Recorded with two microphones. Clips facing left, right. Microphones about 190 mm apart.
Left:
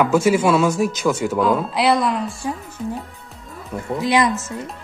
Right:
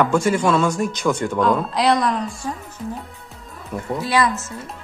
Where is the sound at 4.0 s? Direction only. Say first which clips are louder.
Left 2 dB; 20° left (ahead or behind).